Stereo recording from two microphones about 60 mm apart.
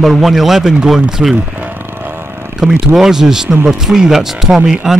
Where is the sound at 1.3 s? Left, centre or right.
Right.